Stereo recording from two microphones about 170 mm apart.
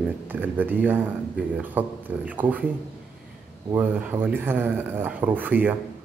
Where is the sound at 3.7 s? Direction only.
10° right (ahead or behind).